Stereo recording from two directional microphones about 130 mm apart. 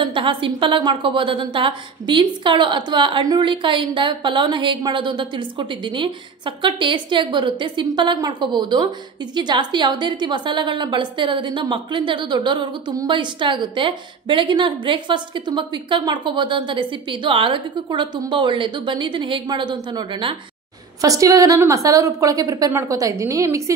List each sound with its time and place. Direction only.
0.0 s a woman's voice: 40° right (ahead or behind)
21.0 s a woman's voice: 25° right (ahead or behind)